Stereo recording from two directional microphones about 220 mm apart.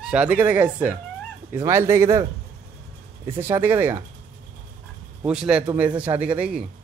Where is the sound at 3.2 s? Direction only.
10° right (ahead or behind).